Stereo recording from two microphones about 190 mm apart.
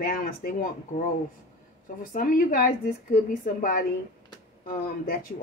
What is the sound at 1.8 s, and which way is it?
Speech, 45° left (ahead or behind).